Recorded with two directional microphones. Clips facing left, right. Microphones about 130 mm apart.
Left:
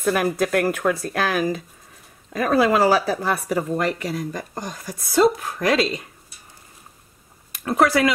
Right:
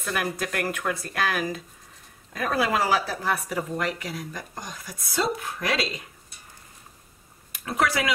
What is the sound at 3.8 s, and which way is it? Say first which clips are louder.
Speech: left 6 dB; 35° left (ahead or behind).